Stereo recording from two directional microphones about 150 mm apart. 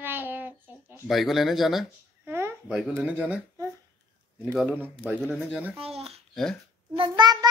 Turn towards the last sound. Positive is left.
turn(degrees=-25)  # may be behind; listen again after turning